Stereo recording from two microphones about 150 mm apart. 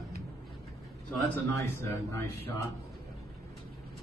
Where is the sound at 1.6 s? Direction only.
15° left (ahead or behind).